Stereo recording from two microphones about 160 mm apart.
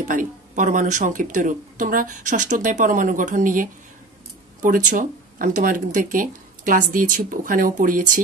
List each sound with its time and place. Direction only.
0.0 s speech: 55° right (ahead or behind)